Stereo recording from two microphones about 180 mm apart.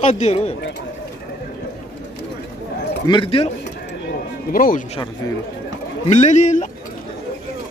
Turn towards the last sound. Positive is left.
turn(degrees=45)  # may be behind; listen again after turning